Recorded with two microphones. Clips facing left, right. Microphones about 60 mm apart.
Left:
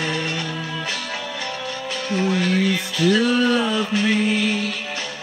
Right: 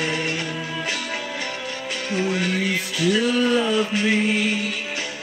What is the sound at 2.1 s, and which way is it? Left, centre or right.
Mantra, right.